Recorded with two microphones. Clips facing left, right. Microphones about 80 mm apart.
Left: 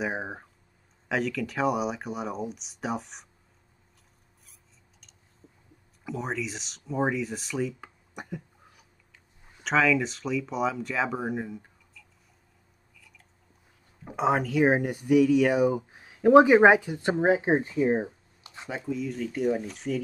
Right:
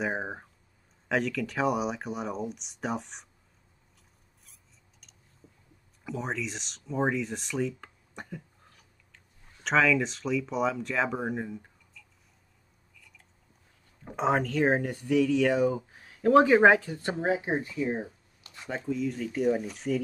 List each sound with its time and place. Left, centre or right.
0.0 s speech: centre
6.0 s speech: centre
9.6 s speech: centre
14.0 s speech: centre; by 18.7 s left
18.7 s speech: centre